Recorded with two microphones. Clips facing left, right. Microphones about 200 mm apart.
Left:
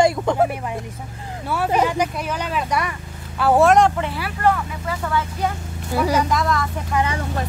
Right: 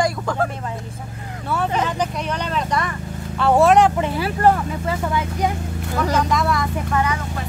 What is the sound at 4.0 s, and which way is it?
Speech, 25° right (ahead or behind).